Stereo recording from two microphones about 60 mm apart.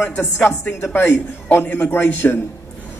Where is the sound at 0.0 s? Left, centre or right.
Left.